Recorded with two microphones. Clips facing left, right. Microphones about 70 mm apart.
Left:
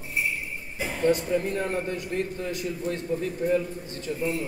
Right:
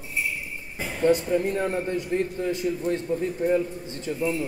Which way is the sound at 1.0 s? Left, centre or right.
Right.